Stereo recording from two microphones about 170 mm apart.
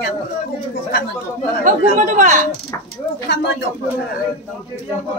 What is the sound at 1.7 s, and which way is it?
Speech, 45° right (ahead or behind).